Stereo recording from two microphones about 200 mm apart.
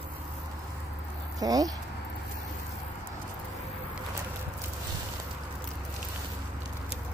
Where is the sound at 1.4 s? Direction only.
20° right (ahead or behind).